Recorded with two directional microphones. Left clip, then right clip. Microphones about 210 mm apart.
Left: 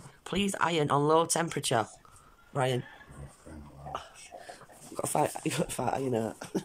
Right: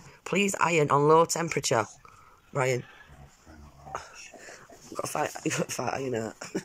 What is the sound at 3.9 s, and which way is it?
Whispering, 5° left (ahead or behind).